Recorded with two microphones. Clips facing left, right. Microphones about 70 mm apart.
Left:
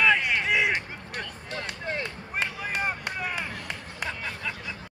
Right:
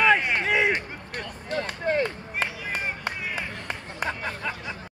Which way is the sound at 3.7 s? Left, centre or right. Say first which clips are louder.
Right 4 dB; right.